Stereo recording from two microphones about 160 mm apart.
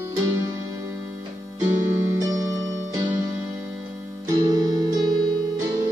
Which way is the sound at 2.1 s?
20° right (ahead or behind).